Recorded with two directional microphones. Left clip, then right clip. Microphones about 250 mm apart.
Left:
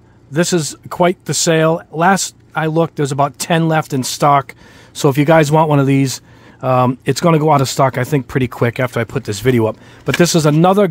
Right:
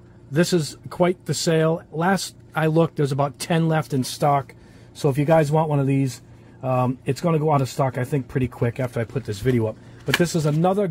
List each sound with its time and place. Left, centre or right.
0.3 s speech: left